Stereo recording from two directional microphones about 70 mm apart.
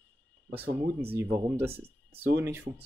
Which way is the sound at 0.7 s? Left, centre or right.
Right.